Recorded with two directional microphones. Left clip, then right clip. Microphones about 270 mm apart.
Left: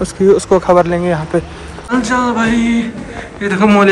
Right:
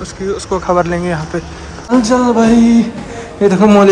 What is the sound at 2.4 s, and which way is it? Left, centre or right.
Mantra, centre.